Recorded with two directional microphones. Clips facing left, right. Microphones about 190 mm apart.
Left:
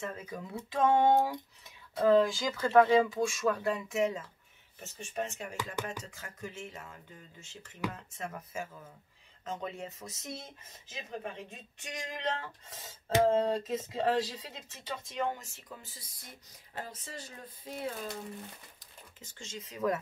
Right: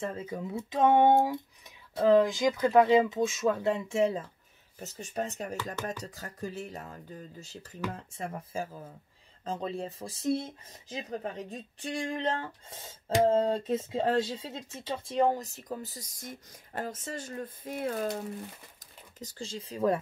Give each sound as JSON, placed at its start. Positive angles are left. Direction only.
{"t": 0.0, "sound": "speech", "side_deg": -30}
{"t": 18.8, "sound": "speech", "side_deg": -40}